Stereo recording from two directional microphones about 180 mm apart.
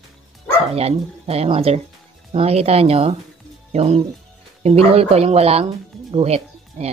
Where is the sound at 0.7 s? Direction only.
35° right (ahead or behind).